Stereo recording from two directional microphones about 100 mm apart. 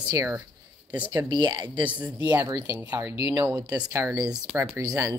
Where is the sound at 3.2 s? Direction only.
30° right (ahead or behind).